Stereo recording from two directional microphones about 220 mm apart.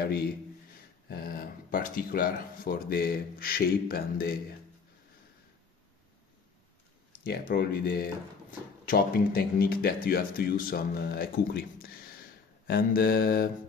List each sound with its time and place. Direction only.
1.0 s speech: 45° left (ahead or behind)
7.2 s speech: 45° left (ahead or behind)